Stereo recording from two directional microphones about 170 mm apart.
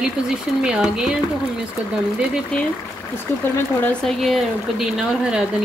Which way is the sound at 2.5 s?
5° left (ahead or behind).